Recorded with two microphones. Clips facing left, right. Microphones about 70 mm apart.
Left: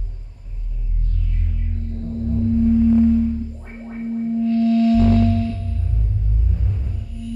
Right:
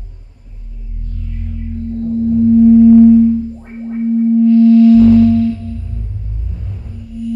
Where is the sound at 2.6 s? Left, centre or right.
Right.